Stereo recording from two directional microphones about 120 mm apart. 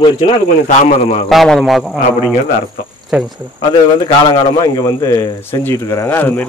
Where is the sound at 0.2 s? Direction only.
60° left (ahead or behind).